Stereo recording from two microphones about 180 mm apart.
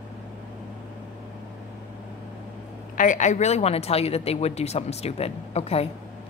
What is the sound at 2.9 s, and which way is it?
A woman's voice, 45° left (ahead or behind).